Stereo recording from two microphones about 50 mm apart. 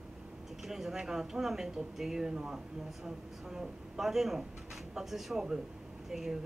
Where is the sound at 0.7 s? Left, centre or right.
Centre.